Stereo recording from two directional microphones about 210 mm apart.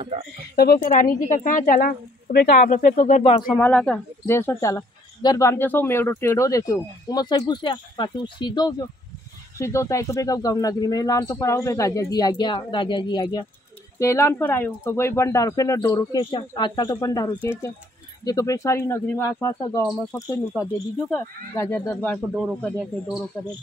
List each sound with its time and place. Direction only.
0.6 s speech: 45° left (ahead or behind); by 3.5 s 25° left (ahead or behind)
3.5 s a woman's voice: 10° left (ahead or behind)